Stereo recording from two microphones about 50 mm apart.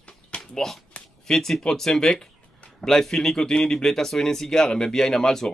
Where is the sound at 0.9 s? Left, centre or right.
Centre.